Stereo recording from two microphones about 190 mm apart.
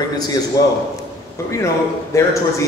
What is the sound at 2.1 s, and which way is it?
Speech, 15° left (ahead or behind).